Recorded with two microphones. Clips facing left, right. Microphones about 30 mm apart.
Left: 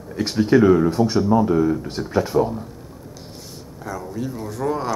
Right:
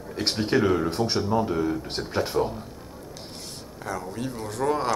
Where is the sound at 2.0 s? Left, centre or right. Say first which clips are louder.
Left 5 dB; right.